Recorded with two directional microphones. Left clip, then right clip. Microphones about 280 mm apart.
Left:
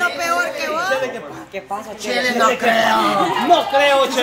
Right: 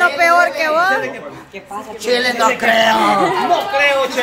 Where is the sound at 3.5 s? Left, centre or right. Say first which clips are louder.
Left 1 dB; left.